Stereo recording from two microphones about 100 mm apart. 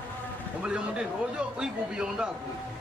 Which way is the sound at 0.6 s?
10° right (ahead or behind).